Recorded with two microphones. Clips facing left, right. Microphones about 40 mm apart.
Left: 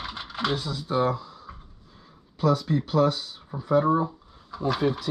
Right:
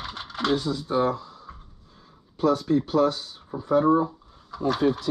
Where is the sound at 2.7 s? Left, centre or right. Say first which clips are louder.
Right 1 dB; left.